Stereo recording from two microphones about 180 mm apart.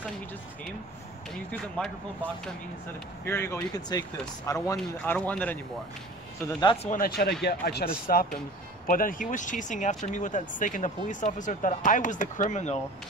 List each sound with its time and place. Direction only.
1.3 s speech: centre (ahead or behind)
3.3 s speech: 10° left (ahead or behind)
6.4 s speech: 25° left (ahead or behind)
6.9 s speech: 55° left (ahead or behind)